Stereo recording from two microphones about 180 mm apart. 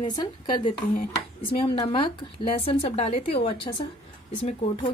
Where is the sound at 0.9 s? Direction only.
55° left (ahead or behind).